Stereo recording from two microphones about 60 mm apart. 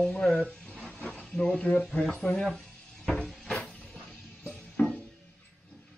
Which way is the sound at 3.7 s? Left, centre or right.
Centre.